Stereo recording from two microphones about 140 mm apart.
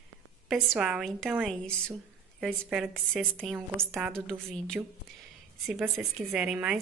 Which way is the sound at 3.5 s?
15° right (ahead or behind).